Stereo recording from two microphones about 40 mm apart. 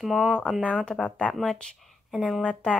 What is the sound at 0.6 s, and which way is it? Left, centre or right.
Speech, left.